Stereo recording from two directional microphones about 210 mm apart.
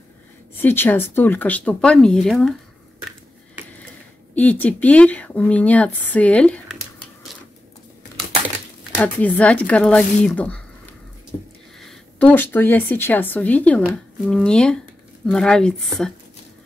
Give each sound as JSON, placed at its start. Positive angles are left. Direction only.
{"t": 0.6, "sound": "speech", "side_deg": 10}
{"t": 4.4, "sound": "speech", "side_deg": 5}
{"t": 9.0, "sound": "speech", "side_deg": 5}
{"t": 11.8, "sound": "speech", "side_deg": 5}